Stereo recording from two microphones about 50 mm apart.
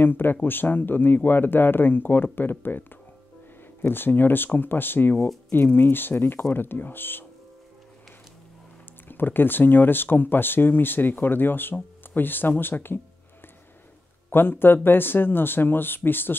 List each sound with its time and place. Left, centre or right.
0.0 s speech: left
3.8 s speech: left
9.1 s speech: left
14.3 s speech: left